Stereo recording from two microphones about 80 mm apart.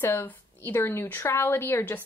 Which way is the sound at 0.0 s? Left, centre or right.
Left.